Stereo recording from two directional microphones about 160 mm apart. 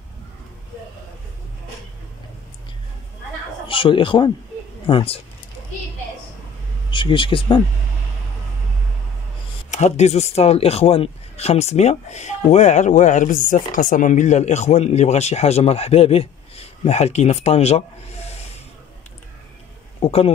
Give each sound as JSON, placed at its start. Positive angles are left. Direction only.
{"t": 3.6, "sound": "speech", "side_deg": 35}
{"t": 6.9, "sound": "speech", "side_deg": 30}
{"t": 9.7, "sound": "speech", "side_deg": 45}
{"t": 20.0, "sound": "a man's voice", "side_deg": 40}